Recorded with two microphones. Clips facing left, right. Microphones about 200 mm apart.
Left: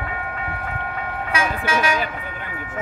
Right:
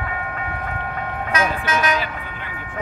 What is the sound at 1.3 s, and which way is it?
Vehicle, 10° left (ahead or behind).